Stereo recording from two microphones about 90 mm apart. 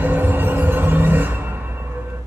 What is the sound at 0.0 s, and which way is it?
Music, 20° right (ahead or behind).